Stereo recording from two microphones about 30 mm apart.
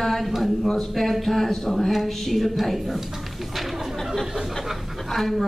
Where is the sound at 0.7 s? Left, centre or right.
Centre.